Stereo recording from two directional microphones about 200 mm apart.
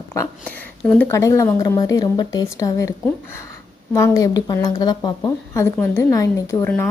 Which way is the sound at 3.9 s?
15° left (ahead or behind).